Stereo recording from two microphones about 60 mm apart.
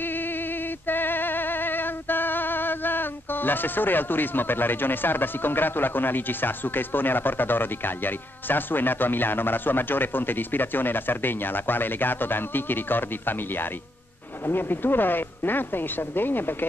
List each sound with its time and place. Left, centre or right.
0.0 s a sound: left
0.8 s music: left
14.4 s speech: left